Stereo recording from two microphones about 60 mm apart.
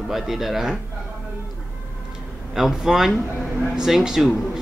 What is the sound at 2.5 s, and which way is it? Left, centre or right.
Speech, centre.